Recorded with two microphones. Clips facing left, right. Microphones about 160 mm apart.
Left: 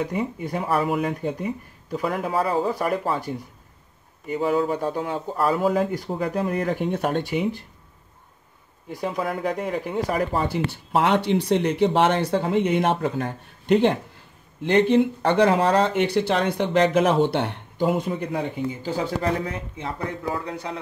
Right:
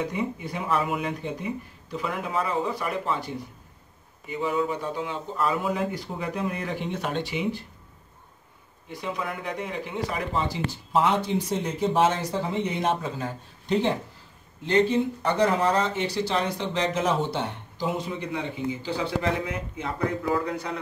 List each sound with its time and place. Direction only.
0.1 s speech: 45° left (ahead or behind)
4.3 s speech: 40° left (ahead or behind)
9.0 s speech: 45° left (ahead or behind)
19.5 s speech: 30° left (ahead or behind)